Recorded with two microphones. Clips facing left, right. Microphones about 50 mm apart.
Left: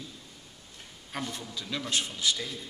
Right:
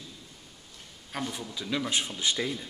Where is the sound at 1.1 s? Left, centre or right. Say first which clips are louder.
Right 2 dB; centre; by 2.5 s right.